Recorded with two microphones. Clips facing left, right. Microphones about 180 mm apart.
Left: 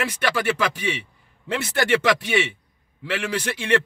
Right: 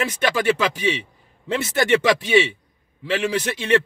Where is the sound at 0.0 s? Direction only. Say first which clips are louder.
Right 3 dB; 25° right (ahead or behind).